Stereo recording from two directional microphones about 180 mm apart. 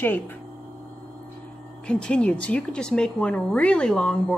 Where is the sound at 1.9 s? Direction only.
5° left (ahead or behind).